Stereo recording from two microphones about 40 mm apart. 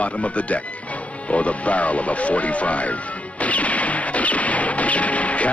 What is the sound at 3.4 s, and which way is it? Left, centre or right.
Smash, left.